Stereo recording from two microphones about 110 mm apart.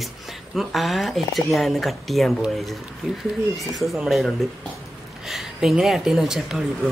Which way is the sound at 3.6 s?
Centre (ahead or behind).